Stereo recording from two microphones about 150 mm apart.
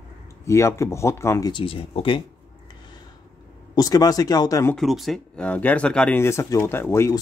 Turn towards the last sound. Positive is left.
turn(degrees=20)  # may be behind; listen again after turning